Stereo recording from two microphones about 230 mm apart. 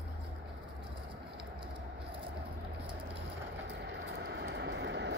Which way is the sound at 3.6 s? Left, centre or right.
Right.